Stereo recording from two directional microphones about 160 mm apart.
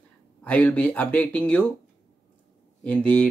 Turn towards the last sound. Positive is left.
turn(degrees=5)  # may be behind; listen again after turning